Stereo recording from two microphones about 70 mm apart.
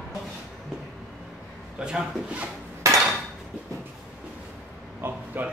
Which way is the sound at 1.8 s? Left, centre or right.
Centre.